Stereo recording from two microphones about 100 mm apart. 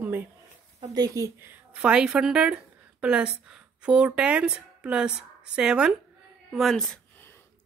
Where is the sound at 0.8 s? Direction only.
40° right (ahead or behind).